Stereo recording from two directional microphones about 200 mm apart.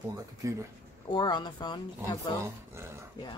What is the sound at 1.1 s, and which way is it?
A woman's voice, 20° left (ahead or behind).